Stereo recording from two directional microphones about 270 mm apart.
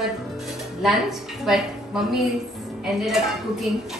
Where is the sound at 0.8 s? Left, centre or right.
Centre.